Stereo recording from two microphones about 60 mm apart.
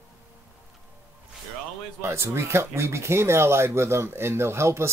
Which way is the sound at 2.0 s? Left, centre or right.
Right.